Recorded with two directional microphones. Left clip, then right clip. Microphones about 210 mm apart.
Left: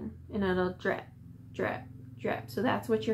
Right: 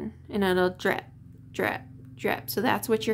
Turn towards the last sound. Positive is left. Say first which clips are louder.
# right 4 dB
turn(degrees=-40)  # may be behind; listen again after turning